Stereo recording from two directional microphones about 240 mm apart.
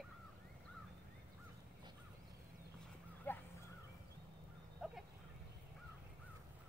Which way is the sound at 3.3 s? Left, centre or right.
Centre.